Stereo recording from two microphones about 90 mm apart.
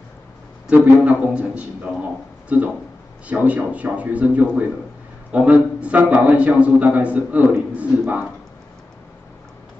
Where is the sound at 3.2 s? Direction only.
15° right (ahead or behind).